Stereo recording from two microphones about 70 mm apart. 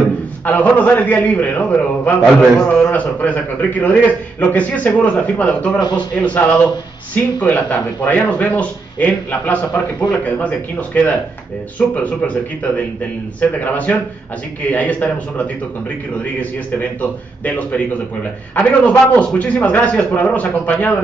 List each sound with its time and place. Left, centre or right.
0.5 s speech: left